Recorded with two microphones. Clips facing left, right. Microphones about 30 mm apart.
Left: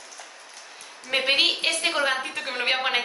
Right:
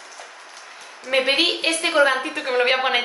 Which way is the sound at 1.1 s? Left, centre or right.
Centre.